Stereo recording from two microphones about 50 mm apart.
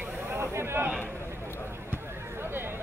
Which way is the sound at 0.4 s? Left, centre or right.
Right.